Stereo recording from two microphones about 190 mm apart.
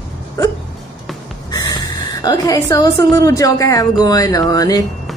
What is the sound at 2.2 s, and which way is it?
A woman's voice, 20° left (ahead or behind).